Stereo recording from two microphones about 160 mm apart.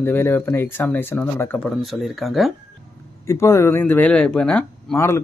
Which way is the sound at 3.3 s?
20° left (ahead or behind).